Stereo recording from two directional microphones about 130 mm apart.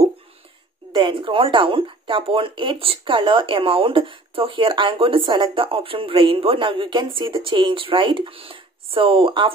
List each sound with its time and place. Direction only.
0.9 s speech: 40° right (ahead or behind)